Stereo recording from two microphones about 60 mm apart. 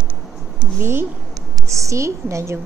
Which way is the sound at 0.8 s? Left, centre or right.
Right.